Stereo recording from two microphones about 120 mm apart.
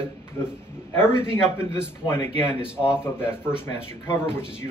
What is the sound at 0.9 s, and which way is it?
Speech, 20° left (ahead or behind).